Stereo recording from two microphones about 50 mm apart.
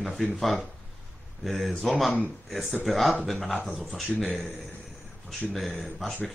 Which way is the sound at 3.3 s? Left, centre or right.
Centre.